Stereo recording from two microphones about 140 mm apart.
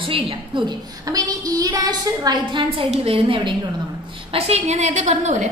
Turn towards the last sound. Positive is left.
turn(degrees=-55)  # may be behind; listen again after turning